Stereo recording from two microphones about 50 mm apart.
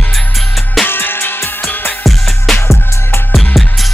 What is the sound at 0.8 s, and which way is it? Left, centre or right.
Music, left.